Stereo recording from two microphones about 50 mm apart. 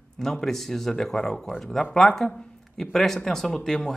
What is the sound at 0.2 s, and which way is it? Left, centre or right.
Speech, centre.